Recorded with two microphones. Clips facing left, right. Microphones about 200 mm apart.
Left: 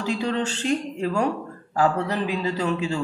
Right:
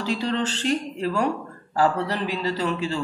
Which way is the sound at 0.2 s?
15° left (ahead or behind).